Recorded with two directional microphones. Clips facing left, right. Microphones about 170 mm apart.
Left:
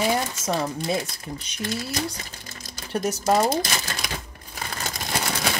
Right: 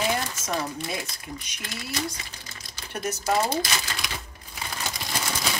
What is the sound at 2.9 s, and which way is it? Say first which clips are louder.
Speech: left 4 dB; 40° left (ahead or behind).